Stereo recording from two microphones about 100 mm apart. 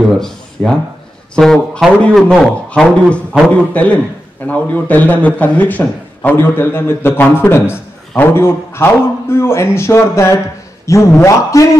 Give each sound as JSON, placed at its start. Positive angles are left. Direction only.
{"t": 0.0, "sound": "a man's voice", "side_deg": 5}